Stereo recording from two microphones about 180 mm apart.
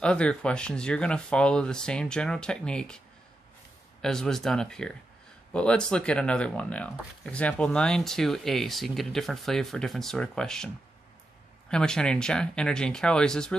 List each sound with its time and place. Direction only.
0.0 s speech: 5° left (ahead or behind)
4.0 s speech: 5° left (ahead or behind)
11.7 s speech: 5° left (ahead or behind)